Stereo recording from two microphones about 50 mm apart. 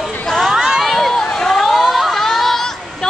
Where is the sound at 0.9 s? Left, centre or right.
Centre.